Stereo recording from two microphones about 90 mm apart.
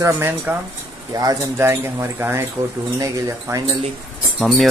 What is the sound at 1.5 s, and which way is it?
Speech, 30° right (ahead or behind).